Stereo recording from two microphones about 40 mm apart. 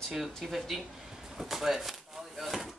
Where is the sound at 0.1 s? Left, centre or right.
Centre.